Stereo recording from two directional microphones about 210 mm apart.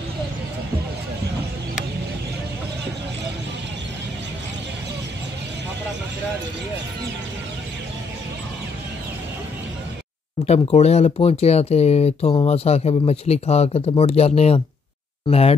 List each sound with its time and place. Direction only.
10.4 s speech: 30° left (ahead or behind)